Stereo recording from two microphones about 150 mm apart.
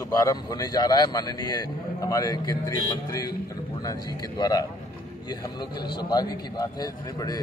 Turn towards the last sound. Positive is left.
turn(degrees=25)  # may be behind; listen again after turning